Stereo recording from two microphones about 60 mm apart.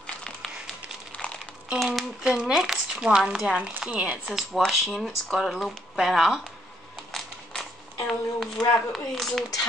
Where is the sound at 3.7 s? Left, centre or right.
Right.